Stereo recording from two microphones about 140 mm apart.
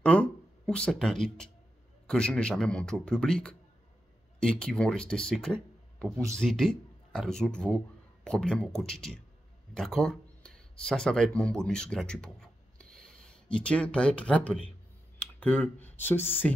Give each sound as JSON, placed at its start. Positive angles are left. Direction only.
{"t": 0.0, "sound": "speech", "side_deg": 10}